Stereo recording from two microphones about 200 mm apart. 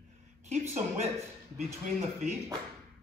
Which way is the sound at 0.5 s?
35° right (ahead or behind).